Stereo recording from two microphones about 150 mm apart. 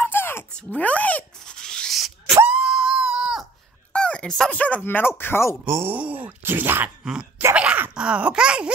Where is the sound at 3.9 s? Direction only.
5° left (ahead or behind).